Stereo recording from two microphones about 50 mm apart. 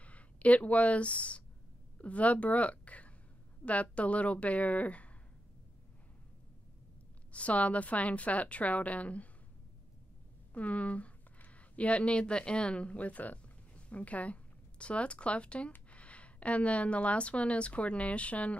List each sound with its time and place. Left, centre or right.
0.0 s a woman's voice: left
7.3 s a woman's voice: left
10.5 s a woman's voice: left